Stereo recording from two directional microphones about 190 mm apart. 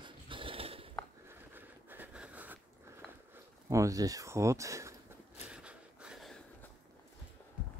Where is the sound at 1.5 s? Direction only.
10° right (ahead or behind).